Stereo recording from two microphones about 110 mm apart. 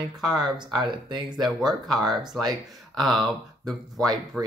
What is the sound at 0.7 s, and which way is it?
Speech, 40° right (ahead or behind).